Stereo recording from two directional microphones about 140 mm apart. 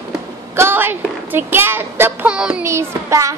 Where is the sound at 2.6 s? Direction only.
20° right (ahead or behind).